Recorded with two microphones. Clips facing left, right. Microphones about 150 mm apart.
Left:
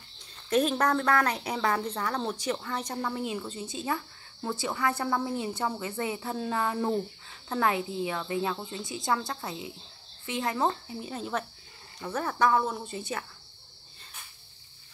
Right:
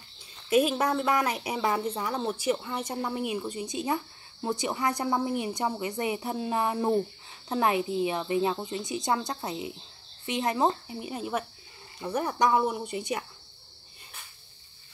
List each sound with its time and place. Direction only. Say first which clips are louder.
0.5 s a woman's voice: right 1 dB; 10° right (ahead or behind)